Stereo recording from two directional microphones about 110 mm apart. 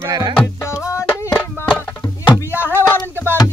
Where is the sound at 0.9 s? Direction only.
25° left (ahead or behind).